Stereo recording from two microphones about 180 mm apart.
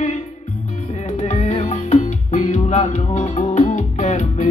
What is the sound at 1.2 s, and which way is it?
Music, 40° left (ahead or behind).